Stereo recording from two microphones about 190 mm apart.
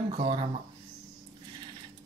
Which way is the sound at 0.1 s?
25° right (ahead or behind).